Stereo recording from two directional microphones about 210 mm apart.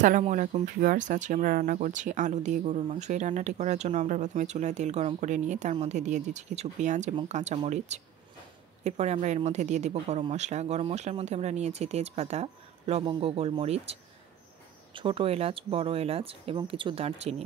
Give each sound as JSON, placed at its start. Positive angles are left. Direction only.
{"t": 0.0, "sound": "speech", "side_deg": -40}
{"t": 15.0, "sound": "speech", "side_deg": -25}